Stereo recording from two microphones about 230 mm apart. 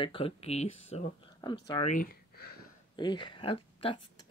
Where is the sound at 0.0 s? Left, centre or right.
Left.